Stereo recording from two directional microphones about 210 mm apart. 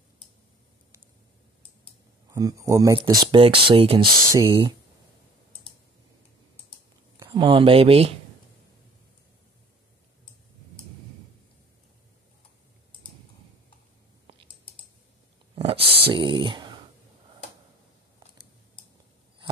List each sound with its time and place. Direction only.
2.3 s speech: 15° right (ahead or behind)
7.2 s speech: 25° right (ahead or behind)
15.5 s a sound: 25° right (ahead or behind)
16.0 s speech: 25° right (ahead or behind)